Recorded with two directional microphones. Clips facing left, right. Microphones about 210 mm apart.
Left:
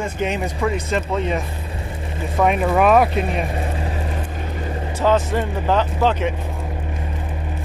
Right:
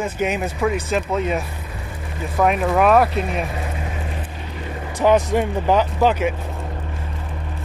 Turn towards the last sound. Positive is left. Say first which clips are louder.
# right 1 dB
turn(degrees=-10)  # may be behind; listen again after turning